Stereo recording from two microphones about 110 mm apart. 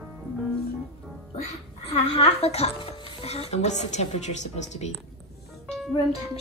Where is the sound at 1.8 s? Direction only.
70° left (ahead or behind); by 4.9 s 90° left.